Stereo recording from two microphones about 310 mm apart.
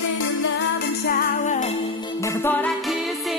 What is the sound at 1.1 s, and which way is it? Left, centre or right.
Music, left.